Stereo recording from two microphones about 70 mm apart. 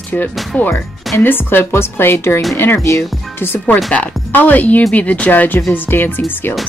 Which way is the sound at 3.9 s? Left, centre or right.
Left.